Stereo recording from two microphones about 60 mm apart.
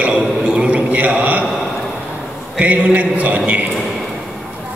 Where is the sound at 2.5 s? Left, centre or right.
Right.